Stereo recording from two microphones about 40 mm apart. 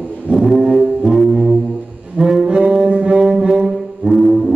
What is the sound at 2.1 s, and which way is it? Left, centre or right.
Music, centre.